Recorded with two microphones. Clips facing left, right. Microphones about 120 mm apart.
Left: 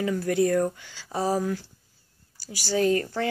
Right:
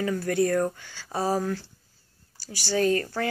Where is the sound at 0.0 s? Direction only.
20° left (ahead or behind).